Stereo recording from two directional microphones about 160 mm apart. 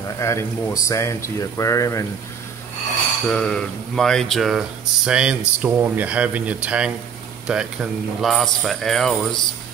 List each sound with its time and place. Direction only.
0.2 s speech: 15° left (ahead or behind)
3.3 s speech: 5° left (ahead or behind)